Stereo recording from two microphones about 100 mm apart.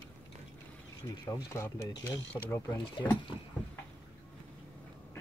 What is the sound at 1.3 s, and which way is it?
Speech, 25° left (ahead or behind).